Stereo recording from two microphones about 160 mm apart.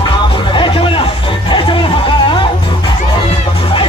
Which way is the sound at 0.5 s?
35° left (ahead or behind).